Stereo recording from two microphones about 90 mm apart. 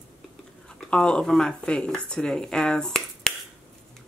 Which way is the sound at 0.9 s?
10° left (ahead or behind).